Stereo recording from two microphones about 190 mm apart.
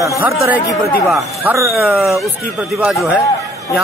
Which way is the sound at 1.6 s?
15° right (ahead or behind).